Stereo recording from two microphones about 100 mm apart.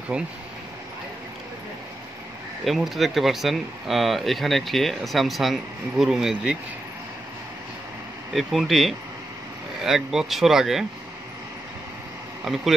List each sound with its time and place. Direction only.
2.6 s speech: centre (ahead or behind)
8.3 s speech: centre (ahead or behind)
12.5 s speech: centre (ahead or behind)